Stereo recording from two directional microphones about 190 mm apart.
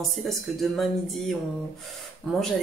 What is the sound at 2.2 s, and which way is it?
Speech, 5° left (ahead or behind).